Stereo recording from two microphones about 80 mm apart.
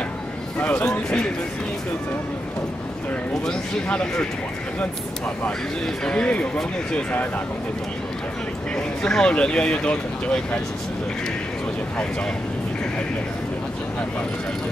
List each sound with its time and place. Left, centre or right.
0.6 s speech: centre
0.9 s speech: centre
3.4 s speech: centre
6.0 s speech: centre
8.7 s speech: centre